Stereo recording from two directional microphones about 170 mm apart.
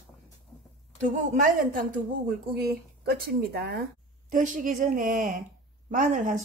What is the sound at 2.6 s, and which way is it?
Speech, 70° right (ahead or behind).